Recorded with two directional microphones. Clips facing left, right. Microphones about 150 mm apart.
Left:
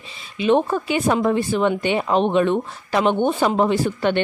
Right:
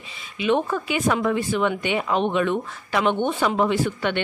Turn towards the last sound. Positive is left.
turn(degrees=35)  # may be behind; listen again after turning